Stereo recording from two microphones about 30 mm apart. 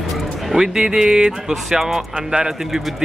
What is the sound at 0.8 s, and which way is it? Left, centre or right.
Speech, right.